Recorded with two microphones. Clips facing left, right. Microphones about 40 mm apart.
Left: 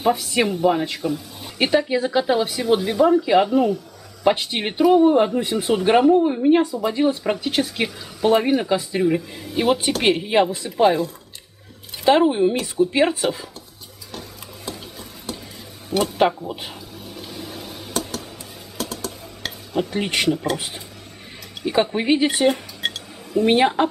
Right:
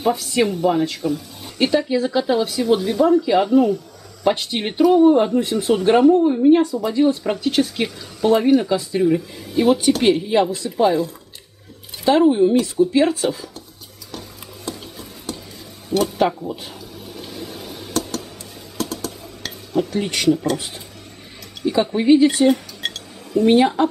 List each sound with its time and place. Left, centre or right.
0.1 s speech: centre
12.1 s speech: left
14.1 s stir: centre
15.9 s speech: centre
17.0 s a sound: centre
18.8 s typing: centre
19.7 s speech: left
21.9 s speech: left
22.5 s dishes: centre
23.5 s speech: left